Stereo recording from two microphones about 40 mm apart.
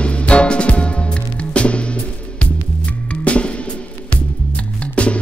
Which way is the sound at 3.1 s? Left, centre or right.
Left.